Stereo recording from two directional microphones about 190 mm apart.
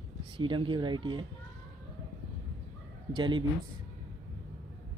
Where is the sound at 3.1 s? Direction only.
25° right (ahead or behind).